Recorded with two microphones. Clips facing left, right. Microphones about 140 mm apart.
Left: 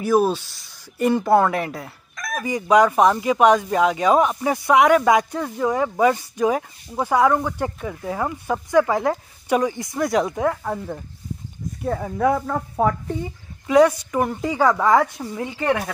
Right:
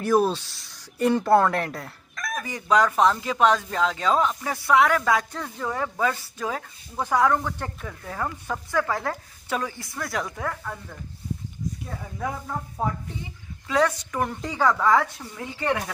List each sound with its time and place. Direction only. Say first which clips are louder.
0.0 s speech: left 3 dB; 5° left (ahead or behind); by 10.5 s 20° left (ahead or behind)
10.5 s speech: left 9 dB; 35° left (ahead or behind)
11.8 s speech: left 15 dB; 65° left (ahead or behind); by 12.9 s 90° left
13.7 s speech: left 8 dB; 15° left (ahead or behind)